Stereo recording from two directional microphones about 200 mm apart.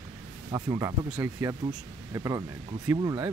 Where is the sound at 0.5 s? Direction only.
15° right (ahead or behind).